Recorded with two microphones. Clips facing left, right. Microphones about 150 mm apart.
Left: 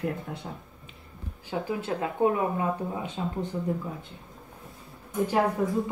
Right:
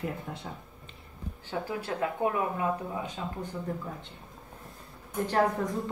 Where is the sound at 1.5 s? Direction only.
20° left (ahead or behind).